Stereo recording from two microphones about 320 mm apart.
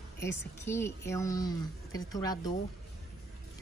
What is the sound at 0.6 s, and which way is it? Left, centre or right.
A woman's voice, centre.